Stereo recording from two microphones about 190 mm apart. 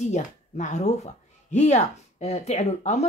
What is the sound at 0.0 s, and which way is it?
A woman's voice, 40° left (ahead or behind).